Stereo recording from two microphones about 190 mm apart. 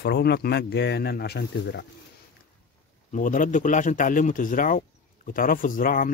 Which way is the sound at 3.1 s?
45° left (ahead or behind).